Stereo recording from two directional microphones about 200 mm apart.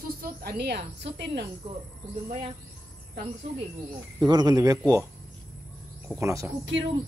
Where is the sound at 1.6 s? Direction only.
25° right (ahead or behind).